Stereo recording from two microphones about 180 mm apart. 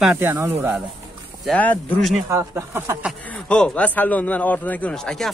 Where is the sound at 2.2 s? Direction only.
15° right (ahead or behind).